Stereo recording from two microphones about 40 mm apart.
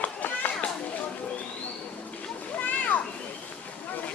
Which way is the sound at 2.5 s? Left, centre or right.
Left.